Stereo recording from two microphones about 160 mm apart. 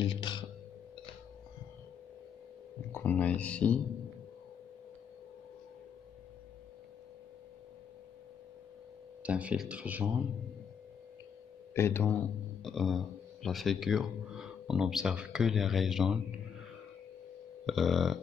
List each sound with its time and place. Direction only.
0.0 s speech: 30° left (ahead or behind)
2.9 s a sound: 10° left (ahead or behind)
9.2 s speech: 10° right (ahead or behind)
11.7 s speech: 15° left (ahead or behind)
12.6 s speech: centre (ahead or behind)
17.6 s speech: centre (ahead or behind)